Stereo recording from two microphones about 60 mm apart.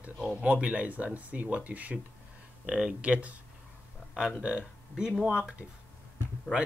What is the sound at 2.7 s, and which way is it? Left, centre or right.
Speech, centre.